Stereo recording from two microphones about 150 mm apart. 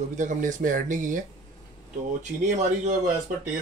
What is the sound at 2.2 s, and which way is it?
Speech, 50° right (ahead or behind).